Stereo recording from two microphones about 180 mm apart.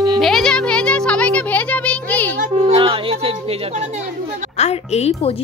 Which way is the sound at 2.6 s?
30° right (ahead or behind).